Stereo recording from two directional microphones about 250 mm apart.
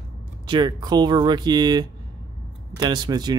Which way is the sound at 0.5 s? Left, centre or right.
Centre.